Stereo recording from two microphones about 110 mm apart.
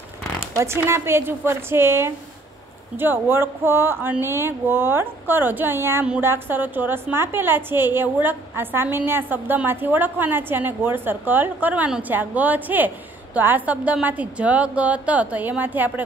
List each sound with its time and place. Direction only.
0.6 s a woman's voice: 25° right (ahead or behind)